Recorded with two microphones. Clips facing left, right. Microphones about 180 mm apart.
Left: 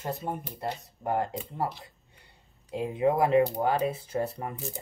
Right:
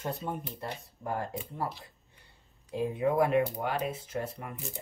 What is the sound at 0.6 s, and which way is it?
Speech, 75° left (ahead or behind).